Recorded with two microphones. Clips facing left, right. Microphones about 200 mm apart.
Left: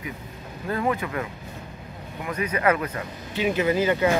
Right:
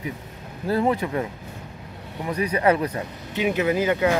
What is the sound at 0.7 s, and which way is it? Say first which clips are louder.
Speech: right 4 dB; 30° right (ahead or behind).